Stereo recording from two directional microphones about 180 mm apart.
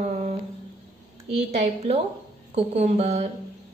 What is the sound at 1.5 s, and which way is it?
A woman's voice, 40° right (ahead or behind).